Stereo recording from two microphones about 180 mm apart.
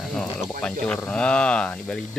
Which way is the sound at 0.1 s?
5° left (ahead or behind).